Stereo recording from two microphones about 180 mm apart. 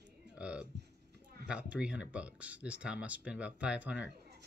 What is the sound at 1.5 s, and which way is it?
Speech, 5° right (ahead or behind).